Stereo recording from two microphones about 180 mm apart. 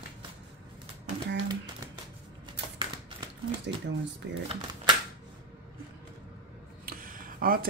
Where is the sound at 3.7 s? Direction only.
70° right (ahead or behind).